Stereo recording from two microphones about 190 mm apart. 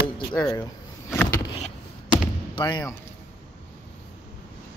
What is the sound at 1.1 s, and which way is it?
Power windows, 15° left (ahead or behind).